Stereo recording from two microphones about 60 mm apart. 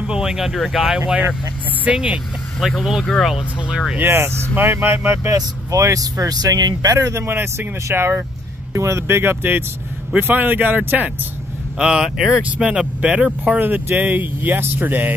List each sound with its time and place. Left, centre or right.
0.0 s speech: centre
2.8 s speech: centre
4.0 s speech: right
5.3 s speech: right
7.1 s speech: right
7.3 s speech: right
8.7 s speech: right
11.8 s speech: centre; by 15.1 s right